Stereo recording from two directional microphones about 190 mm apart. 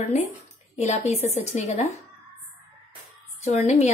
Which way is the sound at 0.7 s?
35° left (ahead or behind).